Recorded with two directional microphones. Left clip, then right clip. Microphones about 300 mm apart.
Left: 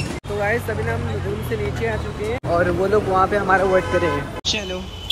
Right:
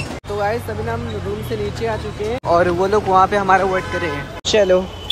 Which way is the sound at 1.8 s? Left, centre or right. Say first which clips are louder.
Right 2 dB; centre.